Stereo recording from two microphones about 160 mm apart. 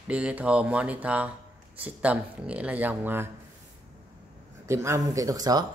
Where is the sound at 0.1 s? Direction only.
10° right (ahead or behind).